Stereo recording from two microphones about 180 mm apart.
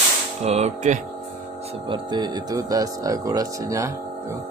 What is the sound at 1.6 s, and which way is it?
Speech, 25° right (ahead or behind).